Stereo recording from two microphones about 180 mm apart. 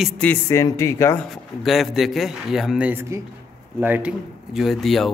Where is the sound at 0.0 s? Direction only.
10° left (ahead or behind).